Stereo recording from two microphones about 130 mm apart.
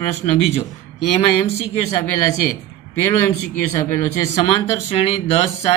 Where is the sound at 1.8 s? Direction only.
25° left (ahead or behind).